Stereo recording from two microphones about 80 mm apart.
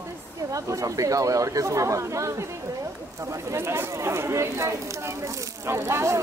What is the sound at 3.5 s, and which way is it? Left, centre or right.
Speech, right.